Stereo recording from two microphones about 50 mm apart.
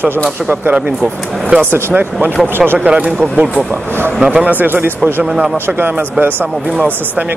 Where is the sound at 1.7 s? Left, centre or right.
Right.